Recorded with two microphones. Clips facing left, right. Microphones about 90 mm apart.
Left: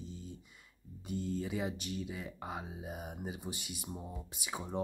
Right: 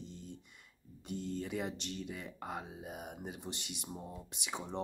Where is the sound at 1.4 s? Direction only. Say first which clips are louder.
Left 1 dB; 5° left (ahead or behind).